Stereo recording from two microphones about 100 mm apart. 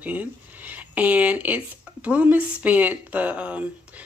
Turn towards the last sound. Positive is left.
turn(degrees=-15)  # may be behind; listen again after turning